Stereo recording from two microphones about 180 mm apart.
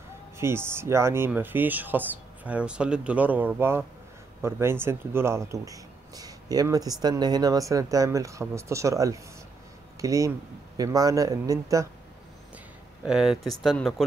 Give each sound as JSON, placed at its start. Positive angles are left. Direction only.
{"t": 0.4, "sound": "speech", "side_deg": -15}
{"t": 13.0, "sound": "speech", "side_deg": -5}